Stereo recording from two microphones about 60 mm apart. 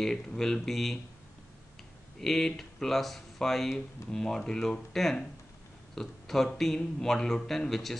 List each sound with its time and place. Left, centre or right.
0.0 s speech: centre
2.1 s speech: centre